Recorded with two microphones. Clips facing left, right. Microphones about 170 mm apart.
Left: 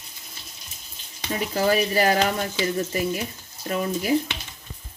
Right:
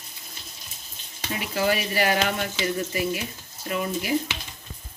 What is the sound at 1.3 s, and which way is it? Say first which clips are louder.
Frying: left 3 dB; 35° left (ahead or behind).